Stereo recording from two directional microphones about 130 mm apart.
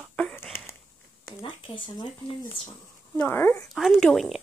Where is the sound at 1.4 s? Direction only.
40° left (ahead or behind).